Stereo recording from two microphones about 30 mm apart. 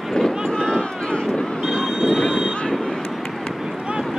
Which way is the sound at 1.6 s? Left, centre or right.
Centre.